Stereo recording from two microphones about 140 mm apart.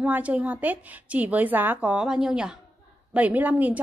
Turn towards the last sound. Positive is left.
turn(degrees=-10)  # may be behind; listen again after turning